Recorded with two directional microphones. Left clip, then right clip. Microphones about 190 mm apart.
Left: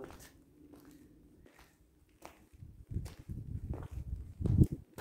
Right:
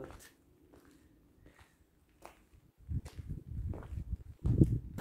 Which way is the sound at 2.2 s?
45° left (ahead or behind).